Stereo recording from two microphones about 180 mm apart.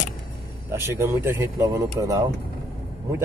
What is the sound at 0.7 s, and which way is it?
Speech, 15° right (ahead or behind).